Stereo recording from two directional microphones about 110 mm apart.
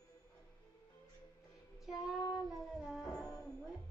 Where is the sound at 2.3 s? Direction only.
Centre (ahead or behind).